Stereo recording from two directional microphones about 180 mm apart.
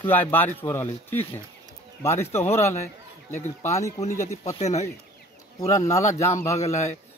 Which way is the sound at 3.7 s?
15° left (ahead or behind).